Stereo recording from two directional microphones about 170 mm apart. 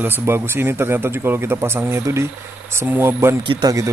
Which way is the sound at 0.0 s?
10° right (ahead or behind).